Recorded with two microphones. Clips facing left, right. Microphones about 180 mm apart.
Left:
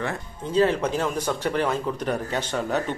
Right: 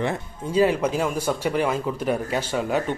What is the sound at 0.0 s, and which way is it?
Speech, 15° right (ahead or behind).